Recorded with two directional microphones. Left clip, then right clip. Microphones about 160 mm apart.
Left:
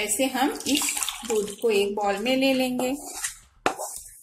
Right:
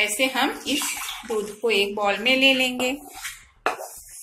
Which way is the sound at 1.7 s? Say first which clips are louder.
Right 2 dB; 35° left (ahead or behind).